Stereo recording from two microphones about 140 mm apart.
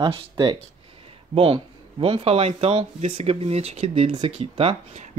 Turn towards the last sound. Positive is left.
turn(degrees=-50)  # may be behind; listen again after turning